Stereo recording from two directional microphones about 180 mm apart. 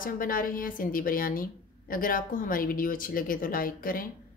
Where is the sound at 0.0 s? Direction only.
50° left (ahead or behind).